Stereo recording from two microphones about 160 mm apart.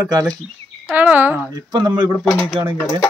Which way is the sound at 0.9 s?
10° right (ahead or behind).